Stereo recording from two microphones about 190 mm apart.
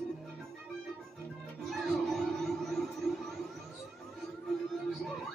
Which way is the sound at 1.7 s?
Centre (ahead or behind).